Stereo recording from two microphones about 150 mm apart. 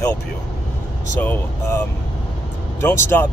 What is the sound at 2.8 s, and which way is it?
Speech, 15° left (ahead or behind).